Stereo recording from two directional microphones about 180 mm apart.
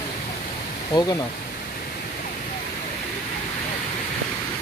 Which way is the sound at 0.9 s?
20° left (ahead or behind).